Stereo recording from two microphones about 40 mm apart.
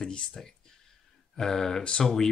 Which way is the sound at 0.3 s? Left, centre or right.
Centre.